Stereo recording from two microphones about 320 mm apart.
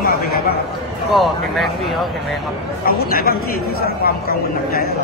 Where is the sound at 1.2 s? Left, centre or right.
Centre.